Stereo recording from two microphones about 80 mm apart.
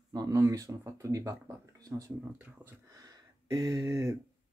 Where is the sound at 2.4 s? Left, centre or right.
Right.